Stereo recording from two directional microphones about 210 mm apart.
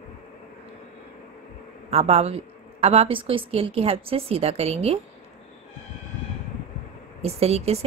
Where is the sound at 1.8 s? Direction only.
30° right (ahead or behind).